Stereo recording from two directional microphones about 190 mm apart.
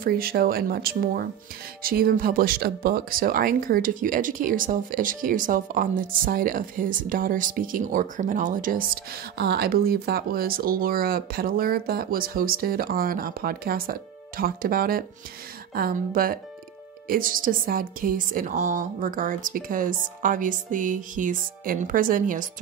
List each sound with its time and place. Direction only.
0.0 s speech: 50° right (ahead or behind)